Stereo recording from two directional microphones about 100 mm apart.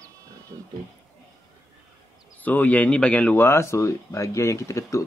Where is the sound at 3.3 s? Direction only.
25° left (ahead or behind).